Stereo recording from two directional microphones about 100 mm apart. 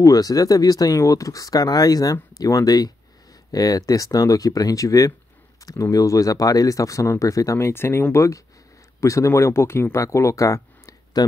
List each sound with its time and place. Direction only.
0.0 s speech: 35° left (ahead or behind)